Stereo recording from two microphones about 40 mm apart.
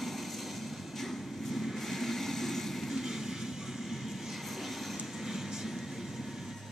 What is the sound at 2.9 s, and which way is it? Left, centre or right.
Music, centre.